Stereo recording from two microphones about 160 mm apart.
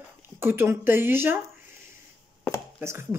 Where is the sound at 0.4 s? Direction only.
15° right (ahead or behind).